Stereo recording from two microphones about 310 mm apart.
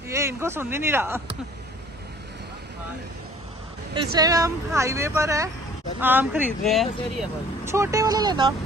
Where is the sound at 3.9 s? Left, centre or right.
Centre.